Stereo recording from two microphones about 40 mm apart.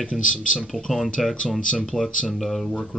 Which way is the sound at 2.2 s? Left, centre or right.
Centre.